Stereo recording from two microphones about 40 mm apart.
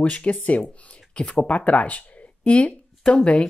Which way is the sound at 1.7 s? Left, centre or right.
Left.